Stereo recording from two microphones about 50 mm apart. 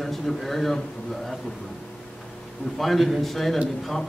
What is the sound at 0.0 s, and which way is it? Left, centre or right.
Speech, centre.